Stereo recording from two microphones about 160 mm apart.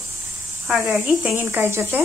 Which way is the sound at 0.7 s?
Centre (ahead or behind).